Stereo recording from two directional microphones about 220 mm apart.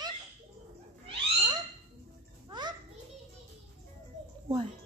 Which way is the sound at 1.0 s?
20° right (ahead or behind).